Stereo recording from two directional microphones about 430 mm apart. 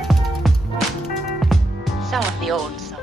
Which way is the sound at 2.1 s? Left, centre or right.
Centre.